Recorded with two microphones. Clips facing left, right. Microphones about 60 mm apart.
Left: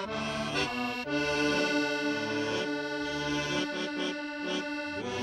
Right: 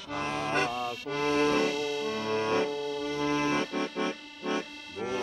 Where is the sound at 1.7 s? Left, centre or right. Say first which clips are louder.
Left 2 dB; left.